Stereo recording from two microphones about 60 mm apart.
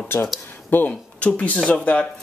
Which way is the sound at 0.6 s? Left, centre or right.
Left.